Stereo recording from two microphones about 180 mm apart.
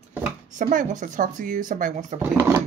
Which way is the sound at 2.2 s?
15° right (ahead or behind).